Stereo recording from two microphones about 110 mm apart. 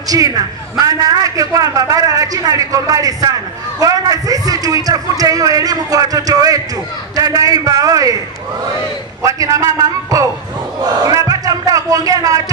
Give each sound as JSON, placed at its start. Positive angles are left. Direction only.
{"t": 0.1, "sound": "a man's voice", "side_deg": -35}
{"t": 9.2, "sound": "a man's voice", "side_deg": -30}